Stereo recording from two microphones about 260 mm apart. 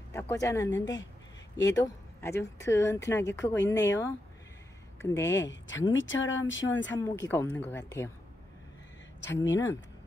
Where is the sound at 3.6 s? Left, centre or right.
Left.